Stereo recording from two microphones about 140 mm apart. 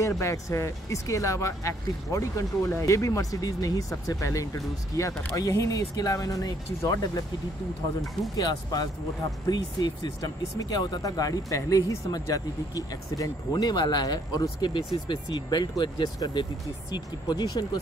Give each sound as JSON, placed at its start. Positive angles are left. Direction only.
{"t": 0.2, "sound": "speech", "side_deg": 20}
{"t": 8.4, "sound": "speech", "side_deg": 25}